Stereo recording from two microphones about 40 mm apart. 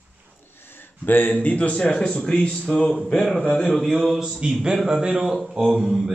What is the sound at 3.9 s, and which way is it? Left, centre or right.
Mantra, centre.